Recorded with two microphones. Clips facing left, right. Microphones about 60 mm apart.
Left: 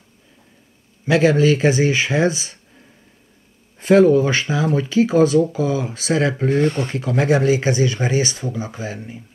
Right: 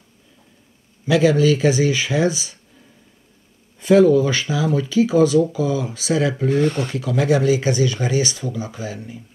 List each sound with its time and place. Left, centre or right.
1.0 s speech: left
3.8 s speech: left